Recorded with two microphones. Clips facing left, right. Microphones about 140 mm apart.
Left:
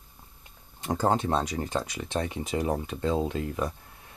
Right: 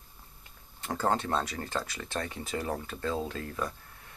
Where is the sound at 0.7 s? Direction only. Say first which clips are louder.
Left 4 dB; 15° left (ahead or behind).